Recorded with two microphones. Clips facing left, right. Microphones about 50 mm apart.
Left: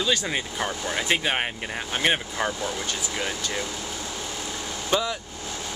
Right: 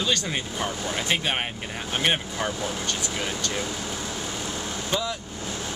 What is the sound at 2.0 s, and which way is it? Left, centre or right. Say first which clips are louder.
Speech: left 1 dB; centre.